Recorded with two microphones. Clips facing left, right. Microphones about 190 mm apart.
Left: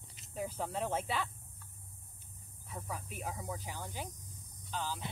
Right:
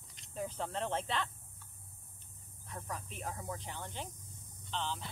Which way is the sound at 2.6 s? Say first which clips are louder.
Left 1 dB; 5° left (ahead or behind).